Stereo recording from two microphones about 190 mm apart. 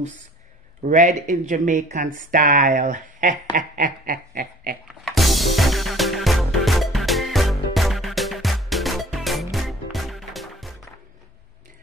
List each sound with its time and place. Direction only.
0.8 s speech: 45° right (ahead or behind)
5.0 s music: centre (ahead or behind)